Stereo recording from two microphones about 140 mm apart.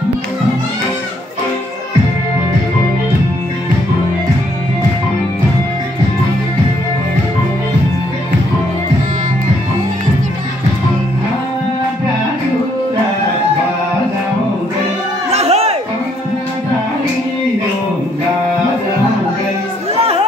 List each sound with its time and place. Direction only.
15.3 s music: 50° right (ahead or behind)